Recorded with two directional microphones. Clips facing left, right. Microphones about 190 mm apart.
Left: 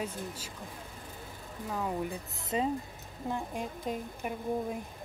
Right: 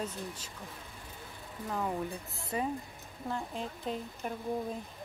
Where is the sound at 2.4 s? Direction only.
20° left (ahead or behind).